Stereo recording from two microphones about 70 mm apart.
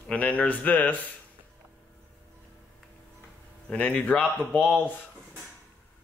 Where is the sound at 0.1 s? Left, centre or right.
Left.